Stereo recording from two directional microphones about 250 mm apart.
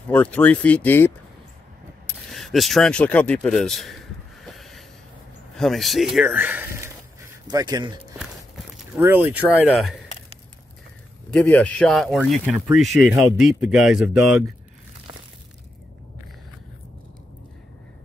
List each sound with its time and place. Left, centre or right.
0.1 s speech: centre
2.0 s a sound: centre
5.6 s speech: centre
8.2 s speech: centre
11.2 s speech: centre